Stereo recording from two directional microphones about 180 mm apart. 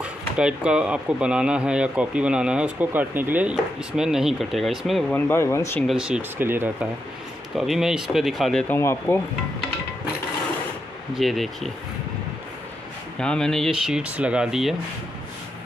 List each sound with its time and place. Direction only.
0.0 s speech: 5° right (ahead or behind)
5.1 s speech: 15° left (ahead or behind)
5.9 s speech: 5° right (ahead or behind)
7.5 s speech: centre (ahead or behind)
8.7 s speech: 15° left (ahead or behind)
11.1 s speech: centre (ahead or behind)
13.2 s speech: 5° left (ahead or behind)